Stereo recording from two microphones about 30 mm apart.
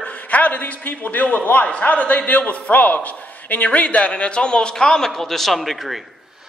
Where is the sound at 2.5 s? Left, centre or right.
Left.